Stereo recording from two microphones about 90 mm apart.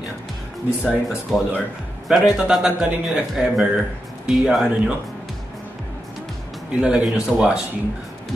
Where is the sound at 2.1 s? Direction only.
5° right (ahead or behind).